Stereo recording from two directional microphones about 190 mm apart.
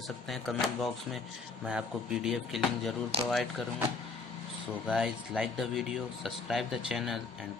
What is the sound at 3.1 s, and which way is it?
Speech, 30° right (ahead or behind).